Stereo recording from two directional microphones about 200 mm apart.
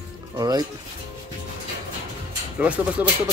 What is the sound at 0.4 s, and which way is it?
Speech, 20° right (ahead or behind).